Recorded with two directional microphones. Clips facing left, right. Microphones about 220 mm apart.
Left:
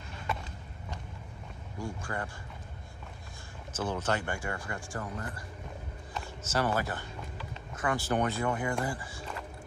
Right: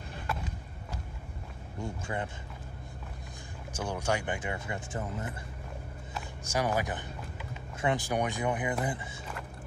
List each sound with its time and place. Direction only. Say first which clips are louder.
1.8 s speech: right 1 dB; 20° right (ahead or behind)
3.7 s speech: even; 15° right (ahead or behind)
6.1 s speech: even; 10° right (ahead or behind)